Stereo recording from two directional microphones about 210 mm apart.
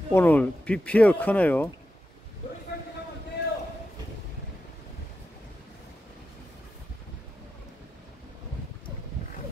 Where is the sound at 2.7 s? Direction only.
50° left (ahead or behind).